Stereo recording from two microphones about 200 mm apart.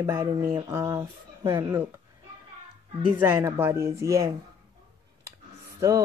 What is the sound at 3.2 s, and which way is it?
Speech, 10° right (ahead or behind).